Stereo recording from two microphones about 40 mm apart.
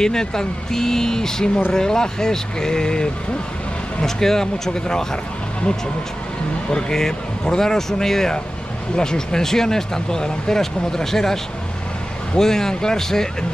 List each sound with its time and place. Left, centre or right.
0.0 s speech: centre
6.7 s speech: centre
12.4 s speech: centre